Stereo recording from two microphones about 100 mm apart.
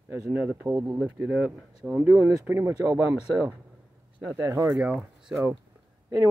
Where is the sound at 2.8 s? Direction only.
30° right (ahead or behind).